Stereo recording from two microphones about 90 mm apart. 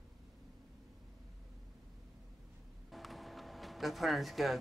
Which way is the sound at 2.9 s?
Centre (ahead or behind).